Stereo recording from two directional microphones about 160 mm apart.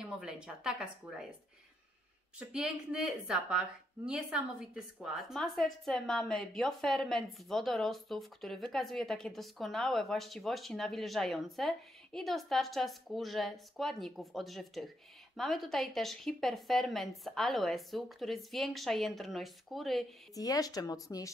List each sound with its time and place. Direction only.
0.0 s speech: 5° right (ahead or behind)
2.3 s speech: 5° right (ahead or behind)
20.3 s speech: 20° left (ahead or behind)